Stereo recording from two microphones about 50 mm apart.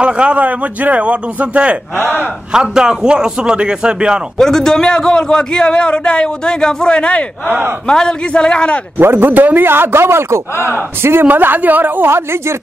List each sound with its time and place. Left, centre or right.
0.0 s a man's voice: right
4.4 s a man's voice: centre
8.9 s speech: right
11.2 s a woman's voice: right
12.1 s speech: right